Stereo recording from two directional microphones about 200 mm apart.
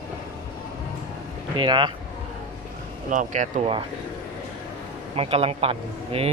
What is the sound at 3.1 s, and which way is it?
Speech, 40° right (ahead or behind).